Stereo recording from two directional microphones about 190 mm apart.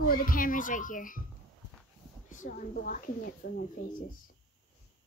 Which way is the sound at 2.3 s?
45° left (ahead or behind).